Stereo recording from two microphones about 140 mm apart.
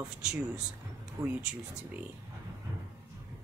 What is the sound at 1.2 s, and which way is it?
Speech, 25° right (ahead or behind).